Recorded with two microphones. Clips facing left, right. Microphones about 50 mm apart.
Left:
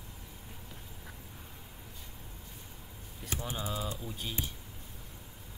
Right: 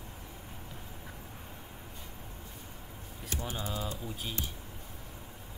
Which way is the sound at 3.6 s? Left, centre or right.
Centre.